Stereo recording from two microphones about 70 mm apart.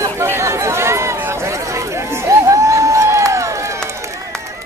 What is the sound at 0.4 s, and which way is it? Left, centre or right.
Run, right.